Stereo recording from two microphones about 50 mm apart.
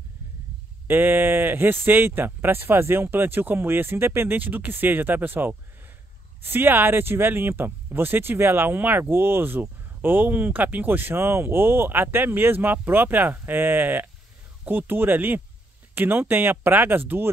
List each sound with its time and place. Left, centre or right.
0.8 s speech: right
4.4 s speech: right
9.1 s speech: right